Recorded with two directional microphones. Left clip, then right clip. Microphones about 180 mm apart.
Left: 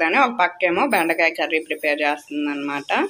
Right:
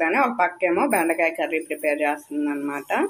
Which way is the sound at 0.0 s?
Centre (ahead or behind).